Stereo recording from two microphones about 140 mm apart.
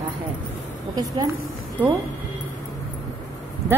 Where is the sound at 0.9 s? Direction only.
25° right (ahead or behind).